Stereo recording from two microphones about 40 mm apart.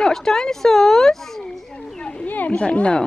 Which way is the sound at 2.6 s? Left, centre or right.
Left.